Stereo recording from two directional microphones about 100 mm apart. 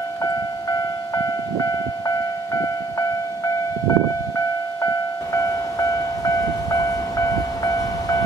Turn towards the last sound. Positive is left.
turn(degrees=35)  # may be behind; listen again after turning